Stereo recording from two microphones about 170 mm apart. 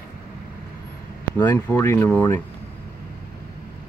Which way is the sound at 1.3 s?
10° left (ahead or behind).